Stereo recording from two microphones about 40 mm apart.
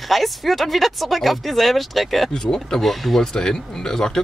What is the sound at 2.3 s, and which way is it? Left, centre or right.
Speech, centre.